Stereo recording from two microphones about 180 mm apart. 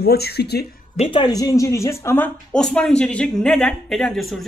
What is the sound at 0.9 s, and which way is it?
Speech, 30° left (ahead or behind).